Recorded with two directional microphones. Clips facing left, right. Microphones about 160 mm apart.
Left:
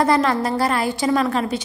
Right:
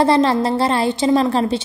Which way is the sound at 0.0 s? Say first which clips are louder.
Right 3 dB; 30° right (ahead or behind).